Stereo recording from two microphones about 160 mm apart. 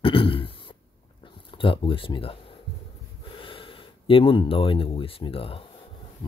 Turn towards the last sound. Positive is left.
turn(degrees=35)  # may be behind; listen again after turning